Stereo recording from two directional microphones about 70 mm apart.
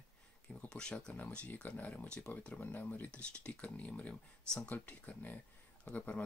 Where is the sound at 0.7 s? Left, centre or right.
Centre.